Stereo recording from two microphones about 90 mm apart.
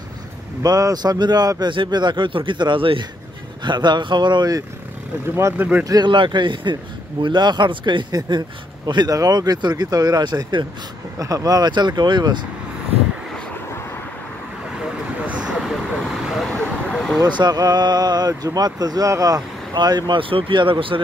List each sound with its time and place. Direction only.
0.6 s speech: 40° right (ahead or behind); by 3.1 s 70° right (ahead or behind)
3.6 s speech: 55° right (ahead or behind)
5.3 s speech: 25° right (ahead or behind)
6.0 s speech: 65° right (ahead or behind)
11.1 s speech: 40° right (ahead or behind)
15.2 s vehicle: 10° right (ahead or behind)
15.6 s vehicle: centre (ahead or behind)
17.2 s speech: 50° right (ahead or behind)
20.2 s speech: 80° right